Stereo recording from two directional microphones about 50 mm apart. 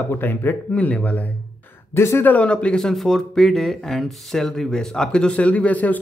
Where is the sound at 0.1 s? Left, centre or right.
Left.